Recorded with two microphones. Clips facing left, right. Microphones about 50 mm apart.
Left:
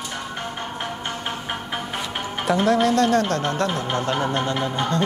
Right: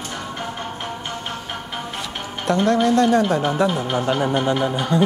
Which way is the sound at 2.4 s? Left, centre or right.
Centre.